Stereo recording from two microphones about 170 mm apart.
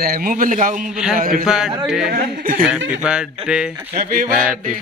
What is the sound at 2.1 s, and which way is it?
Speech, 55° right (ahead or behind).